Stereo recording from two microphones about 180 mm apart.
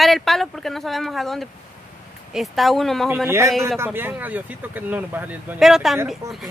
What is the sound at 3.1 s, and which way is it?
Speech, 15° right (ahead or behind).